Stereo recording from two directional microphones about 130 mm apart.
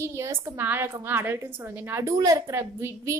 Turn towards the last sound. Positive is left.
turn(degrees=-20)  # may be behind; listen again after turning